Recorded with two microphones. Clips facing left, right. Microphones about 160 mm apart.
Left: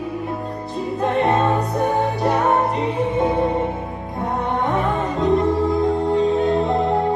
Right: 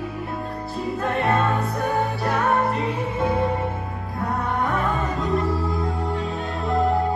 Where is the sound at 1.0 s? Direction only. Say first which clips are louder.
Left 4 dB; 20° left (ahead or behind).